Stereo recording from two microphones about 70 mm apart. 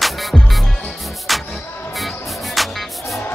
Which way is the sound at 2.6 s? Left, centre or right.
Centre.